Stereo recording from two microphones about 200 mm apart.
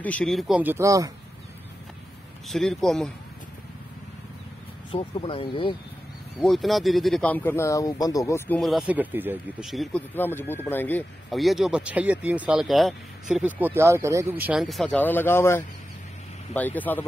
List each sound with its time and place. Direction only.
0.0 s speech: 5° left (ahead or behind); by 1.1 s 15° right (ahead or behind)
2.4 s speech: centre (ahead or behind)
4.9 s speech: 30° left (ahead or behind)
6.4 s speech: centre (ahead or behind)
10.1 s speech: 10° left (ahead or behind); by 14.2 s 15° right (ahead or behind)
14.4 s speech: 5° right (ahead or behind)